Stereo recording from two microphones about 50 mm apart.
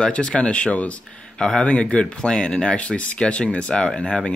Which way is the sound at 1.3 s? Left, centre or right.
Centre.